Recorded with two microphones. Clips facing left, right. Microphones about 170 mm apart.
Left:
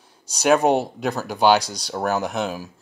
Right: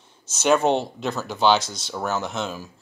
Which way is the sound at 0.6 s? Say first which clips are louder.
Left 2 dB; 15° left (ahead or behind).